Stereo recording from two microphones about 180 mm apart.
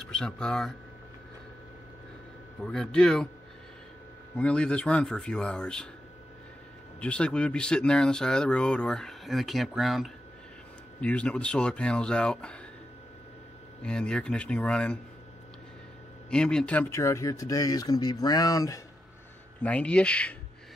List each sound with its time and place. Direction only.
0.1 s speech: 5° left (ahead or behind)
2.6 s speech: 5° left (ahead or behind)
4.4 s speech: 5° left (ahead or behind)
7.0 s speech: 5° left (ahead or behind)
13.8 s speech: 5° left (ahead or behind)
16.3 s speech: 5° left (ahead or behind); by 18.8 s 20° left (ahead or behind)
19.6 s speech: 5° left (ahead or behind)